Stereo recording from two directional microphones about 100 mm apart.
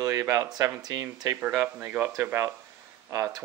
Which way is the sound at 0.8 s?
40° right (ahead or behind).